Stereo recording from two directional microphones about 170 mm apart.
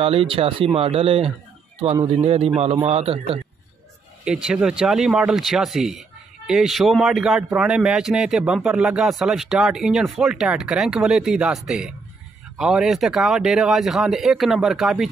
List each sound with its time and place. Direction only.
0.0 s a man's voice: 35° right (ahead or behind)
4.2 s speech: 5° right (ahead or behind)